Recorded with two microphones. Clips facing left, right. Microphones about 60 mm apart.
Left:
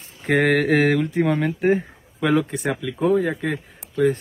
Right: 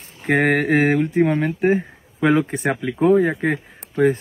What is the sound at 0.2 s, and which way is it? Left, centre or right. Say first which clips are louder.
Mantra: right 1 dB; right.